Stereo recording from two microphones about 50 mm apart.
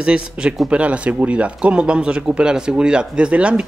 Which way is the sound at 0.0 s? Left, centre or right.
Right.